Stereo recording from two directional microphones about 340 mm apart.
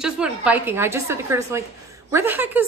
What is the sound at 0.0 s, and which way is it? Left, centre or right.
A woman's voice, centre.